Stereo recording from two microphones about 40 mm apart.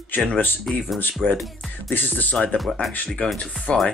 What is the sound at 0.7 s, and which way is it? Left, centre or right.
Speech, centre.